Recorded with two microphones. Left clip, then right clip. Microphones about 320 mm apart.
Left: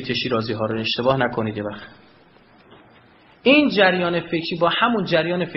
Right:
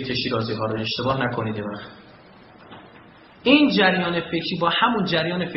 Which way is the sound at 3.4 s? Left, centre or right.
Left.